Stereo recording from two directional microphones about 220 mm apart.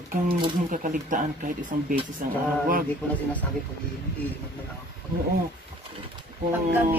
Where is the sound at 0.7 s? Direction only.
40° right (ahead or behind).